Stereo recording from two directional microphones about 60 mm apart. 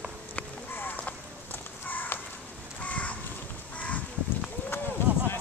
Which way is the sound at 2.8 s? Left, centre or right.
Left.